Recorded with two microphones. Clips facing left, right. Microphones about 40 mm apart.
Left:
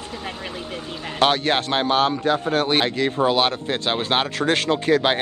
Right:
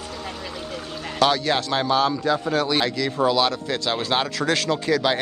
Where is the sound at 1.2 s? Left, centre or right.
Left.